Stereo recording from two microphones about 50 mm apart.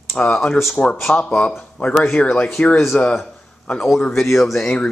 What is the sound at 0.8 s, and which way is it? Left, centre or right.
Speech, left.